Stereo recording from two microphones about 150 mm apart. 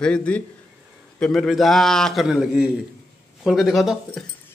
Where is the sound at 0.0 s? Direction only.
5° left (ahead or behind).